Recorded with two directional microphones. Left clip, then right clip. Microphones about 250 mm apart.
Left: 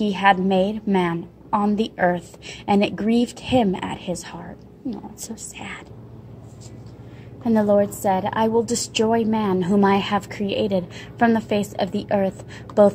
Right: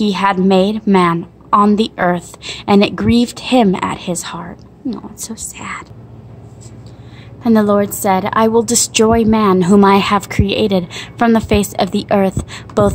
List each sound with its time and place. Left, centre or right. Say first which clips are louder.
0.0 s a woman's voice: right 3 dB; centre
7.4 s a woman's voice: right 5 dB; right